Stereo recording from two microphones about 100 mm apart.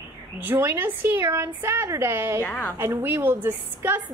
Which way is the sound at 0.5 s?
20° right (ahead or behind).